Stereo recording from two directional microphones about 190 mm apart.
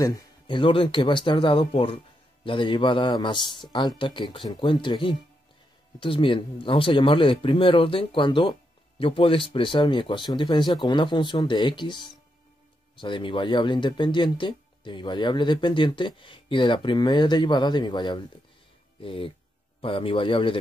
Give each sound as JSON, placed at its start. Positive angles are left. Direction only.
{"t": 0.0, "sound": "speech", "side_deg": 20}